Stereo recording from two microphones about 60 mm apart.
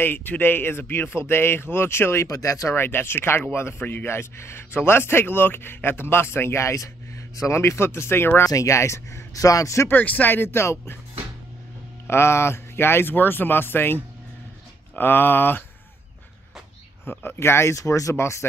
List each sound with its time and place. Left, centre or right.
0.0 s speech: left
2.2 s speech: left
2.7 s speech: left
8.5 s speech: left
9.8 s speech: left
12.1 s speech: left
15.0 s speech: left
17.0 s speech: left
17.7 s speech: left
18.1 s speech: left